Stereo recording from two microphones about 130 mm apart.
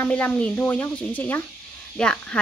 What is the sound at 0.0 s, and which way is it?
Speech, 10° left (ahead or behind).